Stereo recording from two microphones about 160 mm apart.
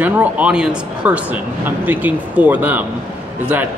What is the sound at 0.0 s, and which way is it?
A man's voice, 10° right (ahead or behind).